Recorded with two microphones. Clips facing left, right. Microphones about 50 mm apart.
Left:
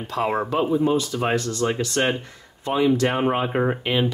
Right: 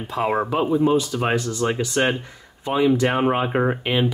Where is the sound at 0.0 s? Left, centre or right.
Centre.